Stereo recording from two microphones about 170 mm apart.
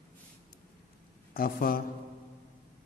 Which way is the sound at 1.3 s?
60° left (ahead or behind).